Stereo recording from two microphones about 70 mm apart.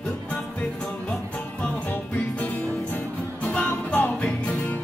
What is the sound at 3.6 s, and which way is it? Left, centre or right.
Music, left.